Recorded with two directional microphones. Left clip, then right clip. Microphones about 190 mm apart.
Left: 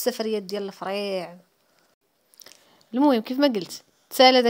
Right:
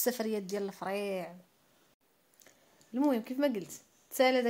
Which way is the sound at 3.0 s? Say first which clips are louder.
Left 10 dB; 40° left (ahead or behind).